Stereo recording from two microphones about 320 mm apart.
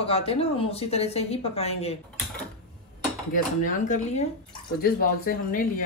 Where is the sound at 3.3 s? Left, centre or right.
Left.